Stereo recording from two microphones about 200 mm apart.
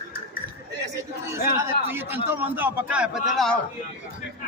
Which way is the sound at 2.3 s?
10° right (ahead or behind).